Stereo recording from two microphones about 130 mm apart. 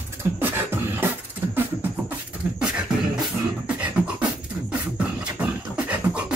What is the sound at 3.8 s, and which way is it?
Beatboxing, 10° right (ahead or behind).